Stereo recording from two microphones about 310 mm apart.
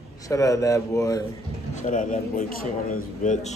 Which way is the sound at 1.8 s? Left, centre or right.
Left.